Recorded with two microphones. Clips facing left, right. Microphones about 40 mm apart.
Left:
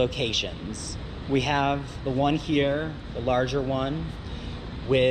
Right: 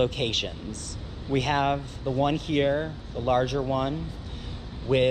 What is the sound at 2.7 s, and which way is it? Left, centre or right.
Speech, left.